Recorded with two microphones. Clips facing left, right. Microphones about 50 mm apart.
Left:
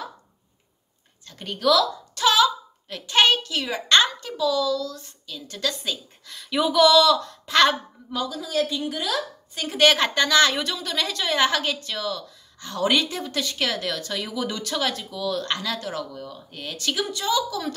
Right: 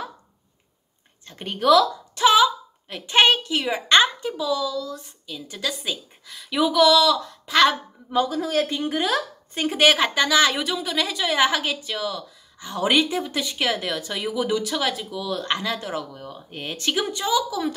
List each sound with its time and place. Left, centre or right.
1.2 s a woman's voice: right; by 7.7 s centre
8.1 s a woman's voice: right
9.7 s a woman's voice: centre